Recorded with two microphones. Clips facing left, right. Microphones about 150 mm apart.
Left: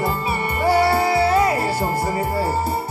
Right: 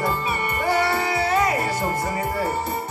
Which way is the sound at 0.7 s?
35° left (ahead or behind).